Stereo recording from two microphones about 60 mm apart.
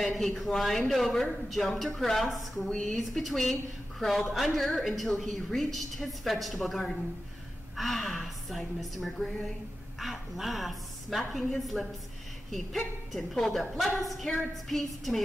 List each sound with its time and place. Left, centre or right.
0.0 s speech: centre